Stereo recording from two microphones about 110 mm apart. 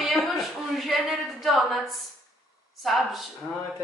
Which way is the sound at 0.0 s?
Centre (ahead or behind).